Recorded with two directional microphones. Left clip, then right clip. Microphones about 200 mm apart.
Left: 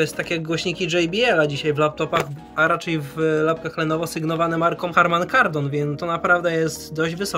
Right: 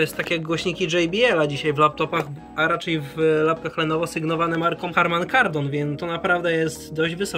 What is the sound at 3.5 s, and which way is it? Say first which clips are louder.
Speech: even; 40° left (ahead or behind).